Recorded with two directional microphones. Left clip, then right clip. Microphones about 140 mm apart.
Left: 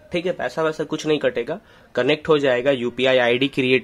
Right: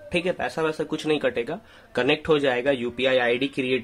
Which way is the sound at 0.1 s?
20° left (ahead or behind).